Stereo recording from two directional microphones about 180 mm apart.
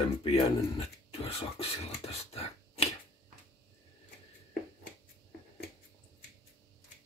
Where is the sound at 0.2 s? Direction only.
35° left (ahead or behind).